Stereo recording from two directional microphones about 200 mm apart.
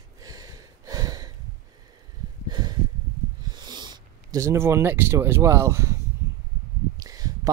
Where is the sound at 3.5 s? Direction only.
20° right (ahead or behind).